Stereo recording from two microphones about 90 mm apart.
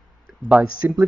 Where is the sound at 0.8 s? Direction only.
25° right (ahead or behind).